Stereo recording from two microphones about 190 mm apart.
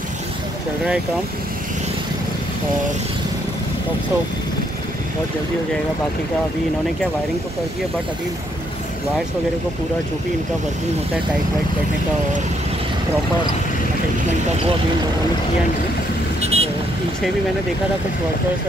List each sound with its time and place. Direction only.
16.3 s vehicle: 35° right (ahead or behind)